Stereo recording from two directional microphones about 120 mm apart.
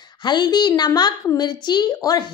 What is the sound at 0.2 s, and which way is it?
A woman's voice, 40° left (ahead or behind).